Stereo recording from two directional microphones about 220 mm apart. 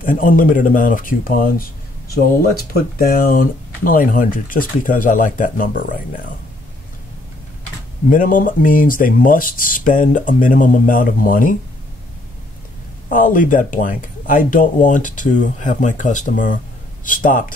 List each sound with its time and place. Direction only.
0.0 s speech: 40° left (ahead or behind)
2.7 s speech: 40° left (ahead or behind)
8.1 s speech: 35° left (ahead or behind)
13.1 s speech: 40° left (ahead or behind)